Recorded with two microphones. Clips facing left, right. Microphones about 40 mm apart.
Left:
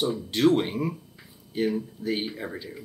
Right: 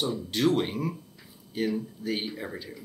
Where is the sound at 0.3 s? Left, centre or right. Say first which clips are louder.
Left 4 dB; centre.